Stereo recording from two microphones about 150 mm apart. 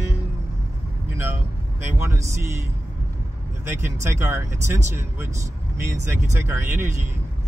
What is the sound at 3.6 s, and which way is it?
Speech, 15° right (ahead or behind).